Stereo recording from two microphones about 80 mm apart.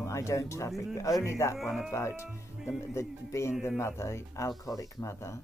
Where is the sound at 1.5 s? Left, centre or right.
Centre.